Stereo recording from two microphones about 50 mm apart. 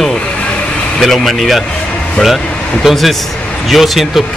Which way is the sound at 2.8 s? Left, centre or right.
Centre.